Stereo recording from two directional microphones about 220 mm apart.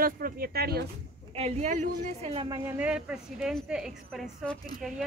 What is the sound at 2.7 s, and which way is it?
A woman's voice, 5° right (ahead or behind).